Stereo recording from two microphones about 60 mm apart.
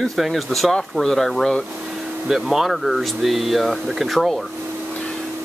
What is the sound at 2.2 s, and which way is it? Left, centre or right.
Speech, centre.